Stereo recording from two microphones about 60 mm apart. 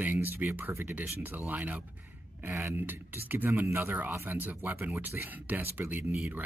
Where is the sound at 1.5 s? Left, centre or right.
Right.